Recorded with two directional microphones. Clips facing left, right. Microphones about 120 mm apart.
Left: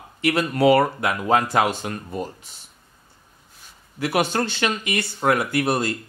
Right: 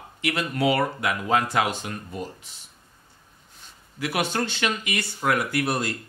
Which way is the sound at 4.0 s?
40° left (ahead or behind).